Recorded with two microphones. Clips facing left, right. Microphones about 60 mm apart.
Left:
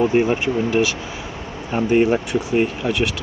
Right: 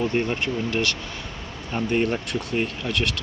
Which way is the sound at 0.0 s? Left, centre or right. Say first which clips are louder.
Left 7 dB; centre.